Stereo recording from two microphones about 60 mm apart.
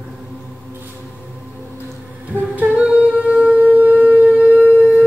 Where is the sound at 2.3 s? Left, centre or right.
Right.